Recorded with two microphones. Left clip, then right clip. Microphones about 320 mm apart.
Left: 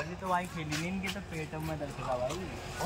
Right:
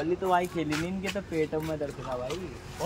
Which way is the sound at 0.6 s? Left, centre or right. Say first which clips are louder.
Right 4 dB; centre.